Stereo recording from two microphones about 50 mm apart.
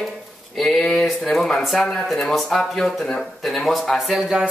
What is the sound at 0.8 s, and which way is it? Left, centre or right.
Speech, centre.